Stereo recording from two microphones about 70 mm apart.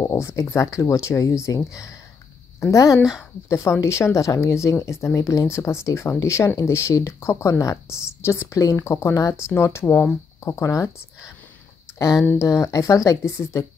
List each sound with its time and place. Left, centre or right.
0.0 s a sound: left
0.4 s speech: left
3.0 s speech: centre
3.4 s speech: left
10.4 s speech: left
12.4 s speech: left
13.2 s speech: left